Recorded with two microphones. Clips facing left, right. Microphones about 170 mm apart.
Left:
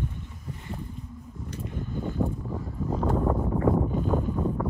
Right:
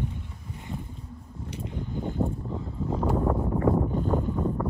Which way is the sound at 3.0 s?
Centre (ahead or behind).